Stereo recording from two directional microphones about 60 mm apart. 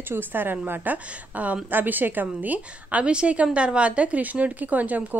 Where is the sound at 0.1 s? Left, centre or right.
Right.